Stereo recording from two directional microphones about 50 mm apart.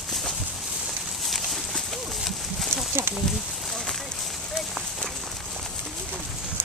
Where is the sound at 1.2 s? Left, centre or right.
Centre.